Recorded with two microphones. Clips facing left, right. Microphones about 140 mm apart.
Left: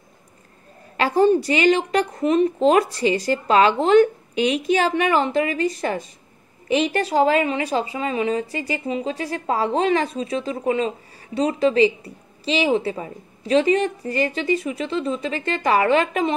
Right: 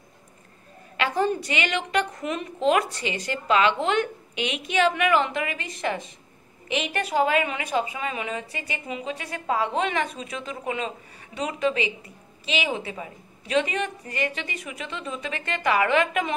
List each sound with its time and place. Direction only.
0.9 s a woman's voice: 35° left (ahead or behind)